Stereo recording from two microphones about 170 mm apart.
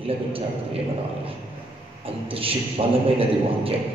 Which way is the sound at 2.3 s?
35° right (ahead or behind).